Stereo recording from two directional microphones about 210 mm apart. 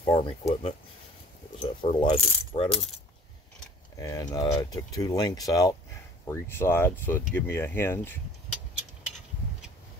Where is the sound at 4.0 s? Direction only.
15° left (ahead or behind).